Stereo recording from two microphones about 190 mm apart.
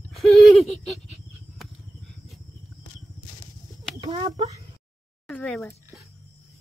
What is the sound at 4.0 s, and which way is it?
Chicken, 25° right (ahead or behind).